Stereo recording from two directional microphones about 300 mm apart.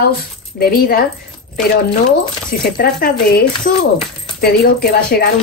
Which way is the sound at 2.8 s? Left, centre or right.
Left.